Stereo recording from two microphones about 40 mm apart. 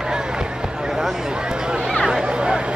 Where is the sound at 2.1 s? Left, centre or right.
Centre.